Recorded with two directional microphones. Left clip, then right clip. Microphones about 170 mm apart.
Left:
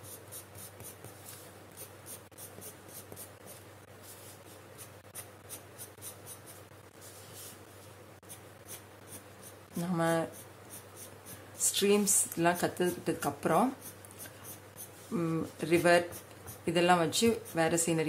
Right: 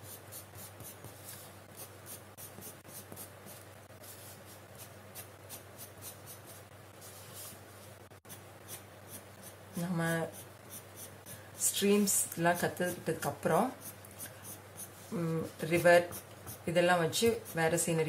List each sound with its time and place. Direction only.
9.9 s speech: 30° left (ahead or behind)
11.6 s speech: 35° left (ahead or behind)
15.1 s speech: 35° left (ahead or behind)